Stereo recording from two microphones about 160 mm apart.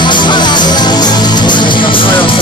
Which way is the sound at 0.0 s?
30° left (ahead or behind).